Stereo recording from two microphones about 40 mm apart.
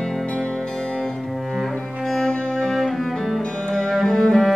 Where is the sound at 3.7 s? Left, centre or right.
Centre.